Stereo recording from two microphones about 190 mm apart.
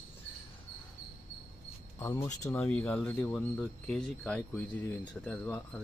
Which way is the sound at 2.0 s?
15° left (ahead or behind).